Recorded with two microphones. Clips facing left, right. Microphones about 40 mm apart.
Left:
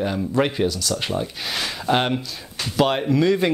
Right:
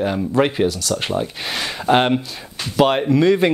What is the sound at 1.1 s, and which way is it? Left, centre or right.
Speech, centre.